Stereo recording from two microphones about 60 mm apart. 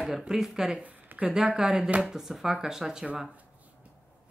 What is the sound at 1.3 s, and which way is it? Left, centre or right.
Speech, centre.